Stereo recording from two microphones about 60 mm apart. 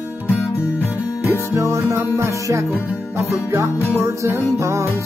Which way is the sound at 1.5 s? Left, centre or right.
Right.